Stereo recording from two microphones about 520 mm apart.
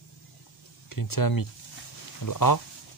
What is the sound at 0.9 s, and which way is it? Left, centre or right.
Speech, left.